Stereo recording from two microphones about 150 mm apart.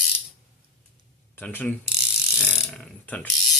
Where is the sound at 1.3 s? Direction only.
10° left (ahead or behind).